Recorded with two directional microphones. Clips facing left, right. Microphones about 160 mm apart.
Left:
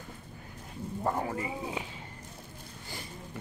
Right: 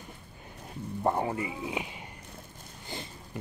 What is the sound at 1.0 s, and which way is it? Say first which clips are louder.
Speech: right 3 dB; 25° right (ahead or behind).